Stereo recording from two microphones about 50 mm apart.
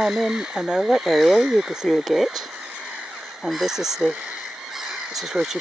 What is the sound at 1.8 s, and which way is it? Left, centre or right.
Speech, centre.